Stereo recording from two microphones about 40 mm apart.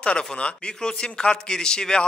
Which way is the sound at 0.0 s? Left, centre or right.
Left.